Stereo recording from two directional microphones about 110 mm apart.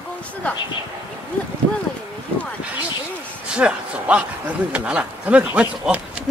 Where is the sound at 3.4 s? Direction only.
10° right (ahead or behind).